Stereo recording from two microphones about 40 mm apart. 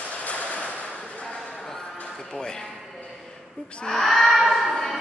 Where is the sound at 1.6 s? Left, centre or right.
Centre.